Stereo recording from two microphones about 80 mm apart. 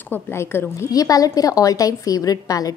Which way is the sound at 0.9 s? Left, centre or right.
Left.